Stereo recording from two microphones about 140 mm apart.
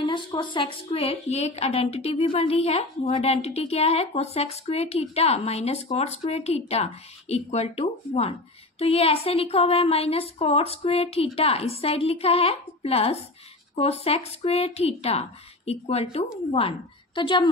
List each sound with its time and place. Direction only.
0.0 s a woman's voice: 35° left (ahead or behind)